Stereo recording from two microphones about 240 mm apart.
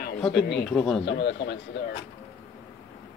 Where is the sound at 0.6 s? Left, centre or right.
Centre.